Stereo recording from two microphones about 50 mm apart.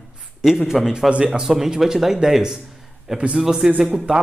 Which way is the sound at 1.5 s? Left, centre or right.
Centre.